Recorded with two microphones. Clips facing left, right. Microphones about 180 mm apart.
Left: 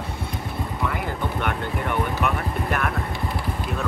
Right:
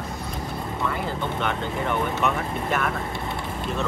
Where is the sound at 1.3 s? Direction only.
5° left (ahead or behind).